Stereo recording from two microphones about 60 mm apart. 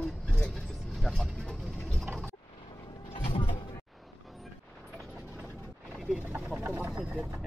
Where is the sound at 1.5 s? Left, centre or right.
Centre.